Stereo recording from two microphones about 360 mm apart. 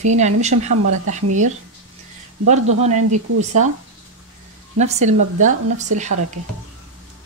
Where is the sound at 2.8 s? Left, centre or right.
Centre.